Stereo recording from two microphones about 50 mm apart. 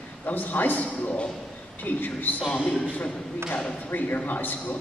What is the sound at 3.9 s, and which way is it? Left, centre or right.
Speech, left.